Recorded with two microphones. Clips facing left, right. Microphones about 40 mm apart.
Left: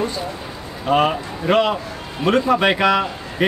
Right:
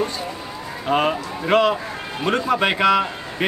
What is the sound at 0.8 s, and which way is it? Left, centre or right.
A man's voice, centre.